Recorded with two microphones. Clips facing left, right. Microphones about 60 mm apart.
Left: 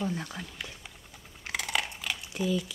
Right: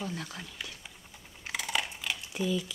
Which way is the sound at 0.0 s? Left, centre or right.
Centre.